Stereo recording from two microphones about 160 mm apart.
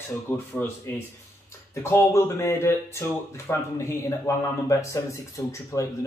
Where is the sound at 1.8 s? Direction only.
15° left (ahead or behind).